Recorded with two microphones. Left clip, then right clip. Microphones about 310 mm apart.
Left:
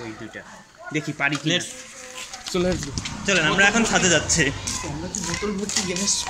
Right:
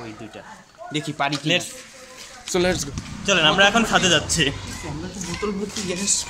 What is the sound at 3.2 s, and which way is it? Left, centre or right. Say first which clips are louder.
Speech: right 2 dB; centre.